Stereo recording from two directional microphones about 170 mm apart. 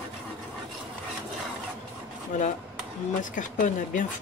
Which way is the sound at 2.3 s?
45° left (ahead or behind).